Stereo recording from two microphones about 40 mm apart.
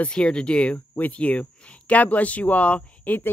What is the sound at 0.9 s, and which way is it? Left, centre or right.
Speech, left.